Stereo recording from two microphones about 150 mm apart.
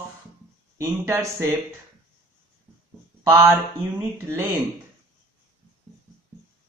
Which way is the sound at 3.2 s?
20° right (ahead or behind).